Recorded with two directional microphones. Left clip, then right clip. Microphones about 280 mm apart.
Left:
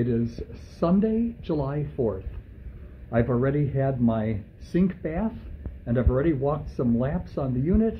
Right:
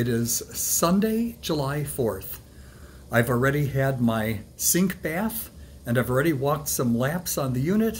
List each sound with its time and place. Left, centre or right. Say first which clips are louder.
0.0 s speech: right 1 dB; centre